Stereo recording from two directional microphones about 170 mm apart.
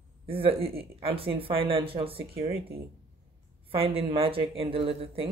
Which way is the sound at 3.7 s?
35° right (ahead or behind).